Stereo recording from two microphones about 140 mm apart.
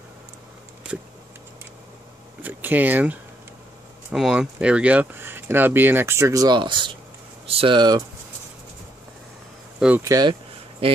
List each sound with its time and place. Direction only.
2.4 s speech: 10° right (ahead or behind); by 8.0 s 35° right (ahead or behind)
9.8 s speech: 10° right (ahead or behind)
10.0 s speech: 25° right (ahead or behind)
10.8 s speech: 40° right (ahead or behind)